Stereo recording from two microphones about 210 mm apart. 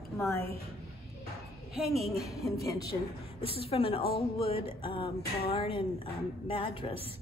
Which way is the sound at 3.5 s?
25° left (ahead or behind).